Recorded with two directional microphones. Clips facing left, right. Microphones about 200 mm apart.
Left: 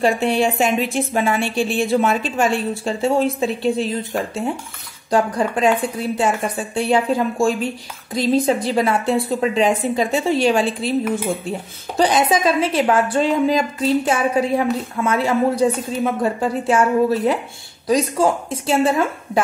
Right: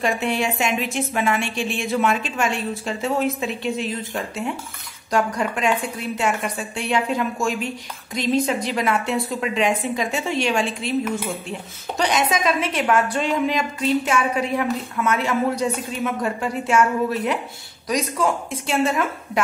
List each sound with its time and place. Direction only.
0.0 s a woman's voice: 30° left (ahead or behind)
12.0 s a woman's voice: 30° left (ahead or behind)